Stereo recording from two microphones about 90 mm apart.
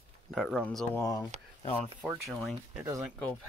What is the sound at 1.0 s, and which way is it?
Speech, 40° left (ahead or behind).